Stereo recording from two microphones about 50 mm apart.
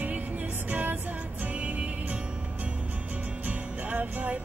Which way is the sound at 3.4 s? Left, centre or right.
Right.